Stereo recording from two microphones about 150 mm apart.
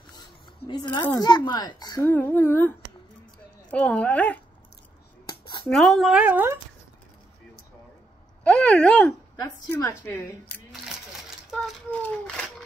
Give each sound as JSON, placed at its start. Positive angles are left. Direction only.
{"t": 0.9, "sound": "a woman's voice", "side_deg": 30}
{"t": 2.0, "sound": "speech", "side_deg": 15}
{"t": 3.7, "sound": "speech", "side_deg": 10}
{"t": 5.7, "sound": "speech", "side_deg": 0}
{"t": 8.5, "sound": "speech", "side_deg": 10}
{"t": 9.4, "sound": "a woman's voice", "side_deg": 20}
{"t": 11.5, "sound": "a sound", "side_deg": 5}